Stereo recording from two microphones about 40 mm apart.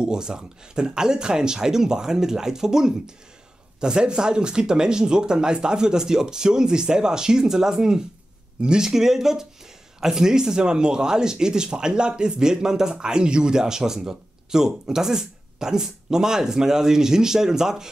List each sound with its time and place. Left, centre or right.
0.0 s speech: centre
8.8 s speech: centre